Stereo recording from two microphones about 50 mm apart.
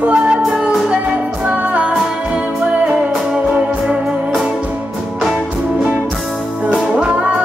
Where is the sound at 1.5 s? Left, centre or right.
Right.